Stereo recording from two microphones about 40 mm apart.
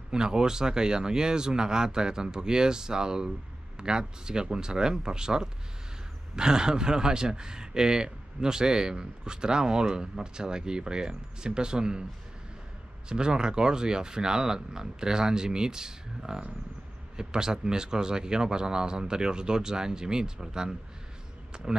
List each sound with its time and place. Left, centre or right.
0.1 s speech: centre
13.1 s speech: right